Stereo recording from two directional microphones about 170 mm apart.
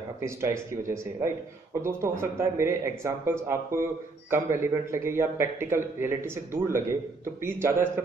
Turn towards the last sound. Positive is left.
turn(degrees=-15)  # may be behind; listen again after turning